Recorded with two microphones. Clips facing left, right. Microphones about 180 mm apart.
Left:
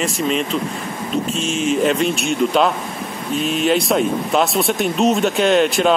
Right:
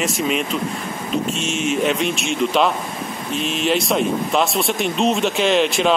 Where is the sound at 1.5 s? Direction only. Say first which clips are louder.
Left 3 dB; centre (ahead or behind).